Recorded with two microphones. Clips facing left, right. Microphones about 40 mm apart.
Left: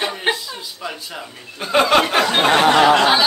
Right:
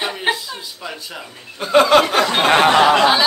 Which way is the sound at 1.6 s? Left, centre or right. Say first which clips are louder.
Right 3 dB; centre.